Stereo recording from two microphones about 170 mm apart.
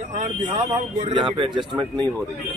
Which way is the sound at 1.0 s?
30° right (ahead or behind).